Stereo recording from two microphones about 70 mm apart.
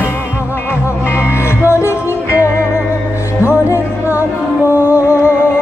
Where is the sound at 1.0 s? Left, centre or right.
Left.